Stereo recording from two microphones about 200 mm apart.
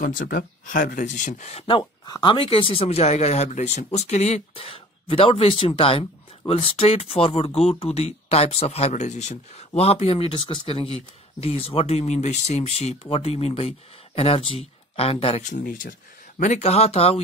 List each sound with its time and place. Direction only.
0.0 s speech: 45° left (ahead or behind)